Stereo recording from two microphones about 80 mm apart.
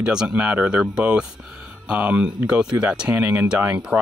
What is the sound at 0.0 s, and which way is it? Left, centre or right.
Speech, centre.